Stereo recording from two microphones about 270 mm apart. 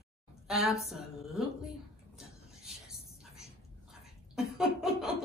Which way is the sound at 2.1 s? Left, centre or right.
Centre.